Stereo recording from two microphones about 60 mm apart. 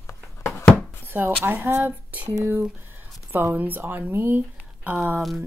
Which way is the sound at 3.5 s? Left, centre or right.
Right.